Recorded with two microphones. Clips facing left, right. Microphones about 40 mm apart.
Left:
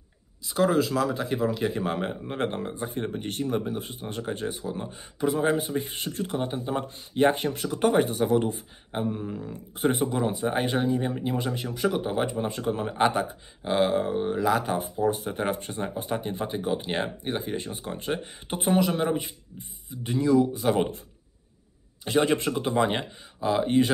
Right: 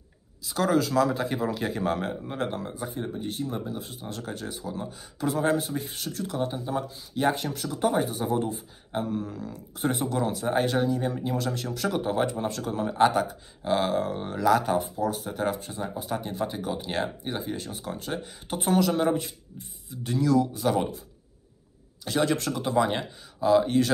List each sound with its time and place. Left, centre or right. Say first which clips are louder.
0.4 s speech: left 1 dB; centre
2.3 s speech: left 2 dB; left
2.9 s speech: left 1 dB; left
5.2 s speech: left 1 dB; centre
5.9 s speech: left 2 dB; left
7.2 s speech: left 3 dB; left
8.9 s speech: even; centre
15.0 s speech: left 2 dB; left
15.5 s speech: left 2 dB; left
16.2 s speech: even; centre
17.4 s speech: left 1 dB; left
18.6 s speech: even; centre
22.0 s speech: left 2 dB; left